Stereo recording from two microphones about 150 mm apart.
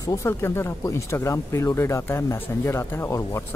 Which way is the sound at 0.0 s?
20° left (ahead or behind).